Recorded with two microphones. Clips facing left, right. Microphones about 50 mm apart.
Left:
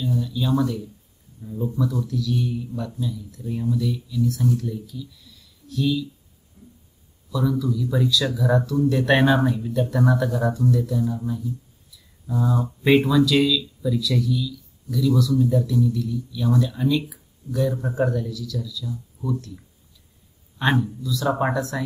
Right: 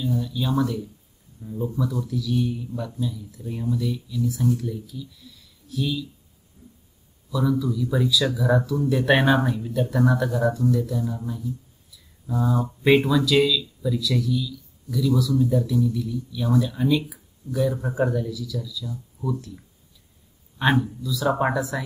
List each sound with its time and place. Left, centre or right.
0.0 s speech: centre
7.2 s speech: centre